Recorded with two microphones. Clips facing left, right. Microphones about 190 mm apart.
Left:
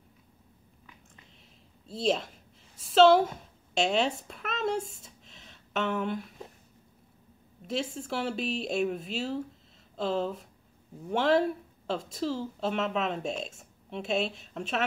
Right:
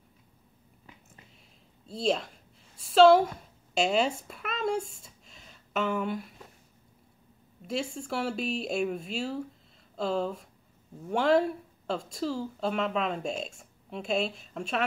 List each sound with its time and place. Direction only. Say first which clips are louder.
1.9 s a woman's voice: even; centre (ahead or behind)
7.6 s speech: even; centre (ahead or behind)